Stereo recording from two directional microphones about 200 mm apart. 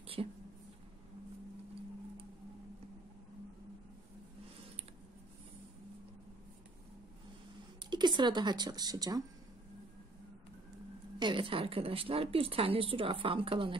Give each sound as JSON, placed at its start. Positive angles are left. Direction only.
{"t": 0.0, "sound": "a sound", "side_deg": -30}
{"t": 7.9, "sound": "speech", "side_deg": -20}
{"t": 11.1, "sound": "speech", "side_deg": -25}